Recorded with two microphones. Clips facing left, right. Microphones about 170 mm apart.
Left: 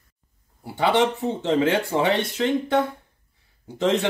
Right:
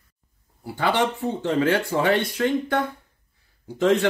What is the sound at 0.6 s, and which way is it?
Speech, 20° left (ahead or behind).